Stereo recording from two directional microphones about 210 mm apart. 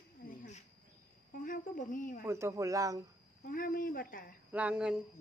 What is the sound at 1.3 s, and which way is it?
Speech, 40° left (ahead or behind).